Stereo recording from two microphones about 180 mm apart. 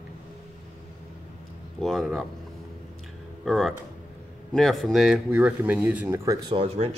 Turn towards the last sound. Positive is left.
turn(degrees=-35)  # may be behind; listen again after turning